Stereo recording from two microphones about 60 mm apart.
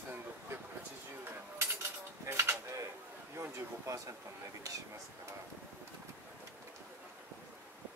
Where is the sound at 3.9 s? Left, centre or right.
Right.